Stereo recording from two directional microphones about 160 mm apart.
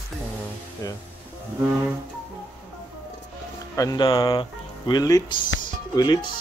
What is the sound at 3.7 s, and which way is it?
Speech, 25° left (ahead or behind).